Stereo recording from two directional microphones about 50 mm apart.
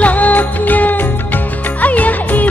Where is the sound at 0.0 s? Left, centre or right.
Left.